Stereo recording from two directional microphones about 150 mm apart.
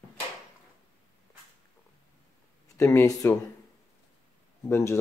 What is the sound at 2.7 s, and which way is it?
Speech, 20° left (ahead or behind).